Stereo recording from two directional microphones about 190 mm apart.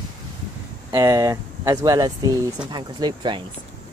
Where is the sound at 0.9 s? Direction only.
20° right (ahead or behind).